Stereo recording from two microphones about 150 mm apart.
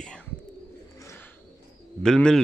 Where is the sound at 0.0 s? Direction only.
5° left (ahead or behind).